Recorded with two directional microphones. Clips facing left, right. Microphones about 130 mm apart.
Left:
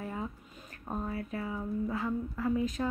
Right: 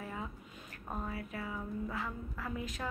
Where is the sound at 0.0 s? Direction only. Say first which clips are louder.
Left 5 dB; 30° left (ahead or behind).